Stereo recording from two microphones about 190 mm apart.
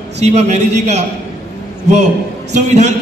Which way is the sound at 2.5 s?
40° right (ahead or behind).